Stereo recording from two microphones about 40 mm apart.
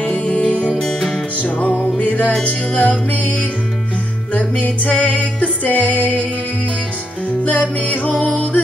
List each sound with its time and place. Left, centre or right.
0.1 s music: left
0.7 s music: centre
1.4 s music: left
7.4 s music: left